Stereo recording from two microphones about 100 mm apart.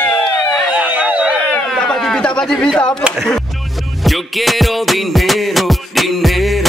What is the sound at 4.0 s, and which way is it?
Music, centre (ahead or behind).